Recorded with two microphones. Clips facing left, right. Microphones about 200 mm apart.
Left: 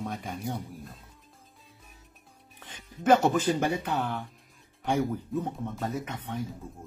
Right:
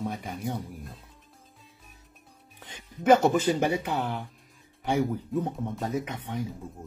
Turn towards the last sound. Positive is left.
turn(degrees=-15)  # may be behind; listen again after turning